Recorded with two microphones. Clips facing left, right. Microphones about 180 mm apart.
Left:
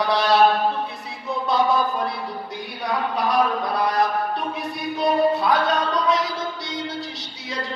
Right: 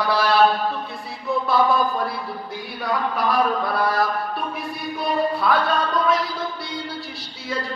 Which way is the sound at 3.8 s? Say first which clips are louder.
Left 4 dB; 20° left (ahead or behind).